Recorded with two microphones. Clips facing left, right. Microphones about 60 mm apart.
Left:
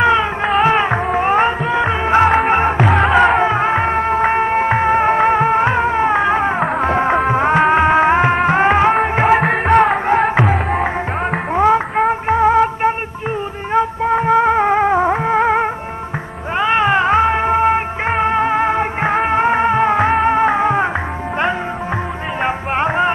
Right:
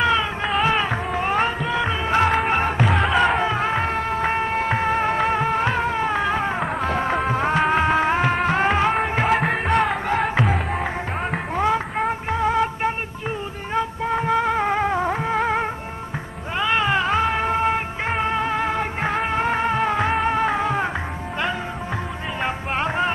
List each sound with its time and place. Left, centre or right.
0.0 s music: left
2.8 s music: centre
3.3 s music: left
9.3 s music: centre
11.5 s music: left
22.4 s music: left